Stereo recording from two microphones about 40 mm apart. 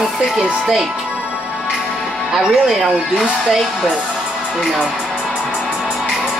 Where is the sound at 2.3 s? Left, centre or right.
Centre.